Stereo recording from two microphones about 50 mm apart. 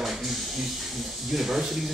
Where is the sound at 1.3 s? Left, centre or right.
Centre.